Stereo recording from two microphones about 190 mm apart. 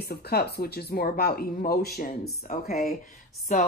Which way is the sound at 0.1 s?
55° left (ahead or behind).